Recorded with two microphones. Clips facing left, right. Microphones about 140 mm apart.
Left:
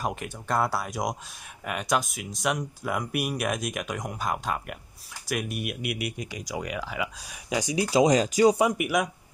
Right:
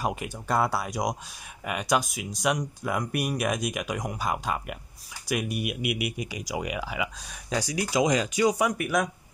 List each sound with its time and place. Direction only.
0.0 s speech: 5° right (ahead or behind); by 8.5 s 35° left (ahead or behind)
8.5 s speech: 25° left (ahead or behind)
8.8 s speech: 10° left (ahead or behind)